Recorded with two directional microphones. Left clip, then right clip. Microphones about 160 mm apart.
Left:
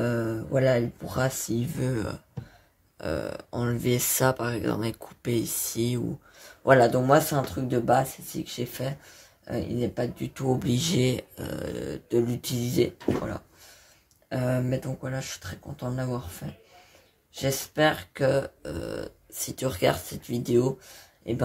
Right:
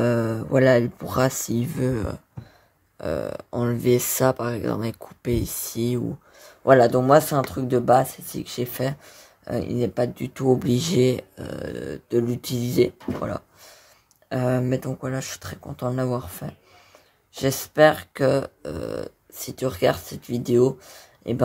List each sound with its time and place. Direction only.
0.0 s speech: 45° right (ahead or behind)
14.3 s speech: 45° right (ahead or behind)